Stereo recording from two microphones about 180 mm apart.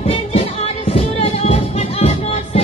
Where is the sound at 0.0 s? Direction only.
35° left (ahead or behind).